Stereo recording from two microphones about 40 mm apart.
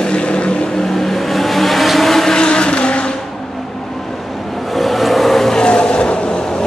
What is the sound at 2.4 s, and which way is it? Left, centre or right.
Vehicle, left.